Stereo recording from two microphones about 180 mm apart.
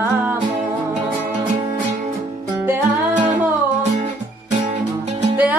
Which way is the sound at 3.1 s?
45° right (ahead or behind).